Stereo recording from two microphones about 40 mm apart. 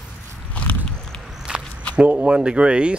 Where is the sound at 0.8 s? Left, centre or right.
Centre.